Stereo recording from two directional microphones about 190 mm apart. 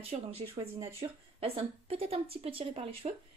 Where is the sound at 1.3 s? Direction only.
30° right (ahead or behind).